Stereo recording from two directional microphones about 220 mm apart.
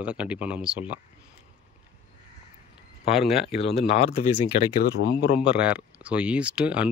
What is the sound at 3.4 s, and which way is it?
Speech, 25° left (ahead or behind).